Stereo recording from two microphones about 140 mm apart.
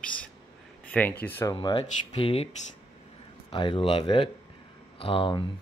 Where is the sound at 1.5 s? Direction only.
40° left (ahead or behind).